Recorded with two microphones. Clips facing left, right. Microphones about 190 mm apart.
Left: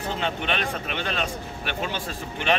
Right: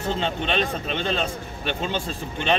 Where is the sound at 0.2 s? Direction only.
30° right (ahead or behind).